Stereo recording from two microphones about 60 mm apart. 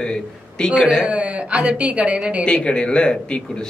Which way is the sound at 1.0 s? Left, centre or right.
Right.